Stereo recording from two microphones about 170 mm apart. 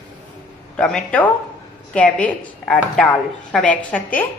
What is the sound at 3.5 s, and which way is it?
Speech, 5° left (ahead or behind).